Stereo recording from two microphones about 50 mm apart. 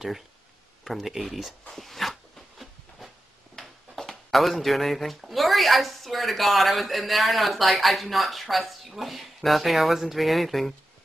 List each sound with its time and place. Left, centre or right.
0.8 s speech: centre
3.5 s speech: centre